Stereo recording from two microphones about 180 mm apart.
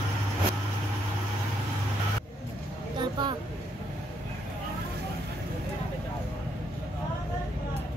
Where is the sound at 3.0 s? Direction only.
25° right (ahead or behind).